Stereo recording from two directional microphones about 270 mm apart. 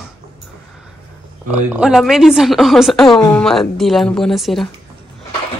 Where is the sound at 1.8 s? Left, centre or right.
Centre.